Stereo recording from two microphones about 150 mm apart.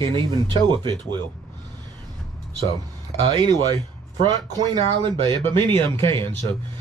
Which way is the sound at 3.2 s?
30° right (ahead or behind).